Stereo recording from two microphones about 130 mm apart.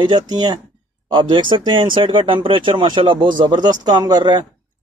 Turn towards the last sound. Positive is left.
turn(degrees=-35)  # may be behind; listen again after turning